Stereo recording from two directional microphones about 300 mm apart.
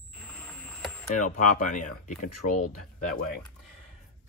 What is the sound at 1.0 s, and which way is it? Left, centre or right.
Speech, left.